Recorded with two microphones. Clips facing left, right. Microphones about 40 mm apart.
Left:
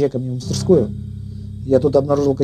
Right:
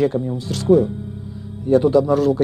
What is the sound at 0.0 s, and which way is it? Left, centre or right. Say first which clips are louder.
Speech: even; right.